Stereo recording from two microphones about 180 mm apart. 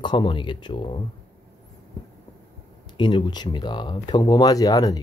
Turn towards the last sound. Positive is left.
turn(degrees=20)  # may be behind; listen again after turning